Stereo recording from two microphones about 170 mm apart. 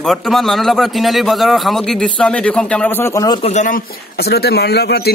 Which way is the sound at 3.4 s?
45° left (ahead or behind).